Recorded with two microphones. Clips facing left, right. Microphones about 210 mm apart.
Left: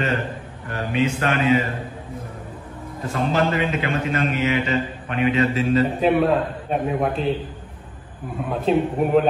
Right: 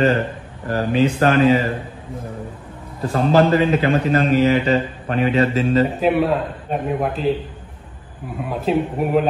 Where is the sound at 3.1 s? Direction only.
35° right (ahead or behind).